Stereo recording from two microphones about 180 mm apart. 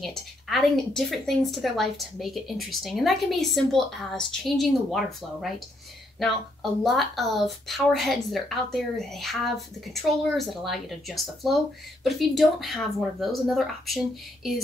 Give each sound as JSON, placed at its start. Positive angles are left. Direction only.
{"t": 0.0, "sound": "a woman's voice", "side_deg": 0}